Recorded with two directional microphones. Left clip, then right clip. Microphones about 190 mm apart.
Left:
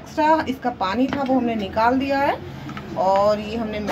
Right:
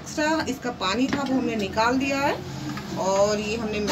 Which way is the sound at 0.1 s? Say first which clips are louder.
Left 6 dB; 20° left (ahead or behind).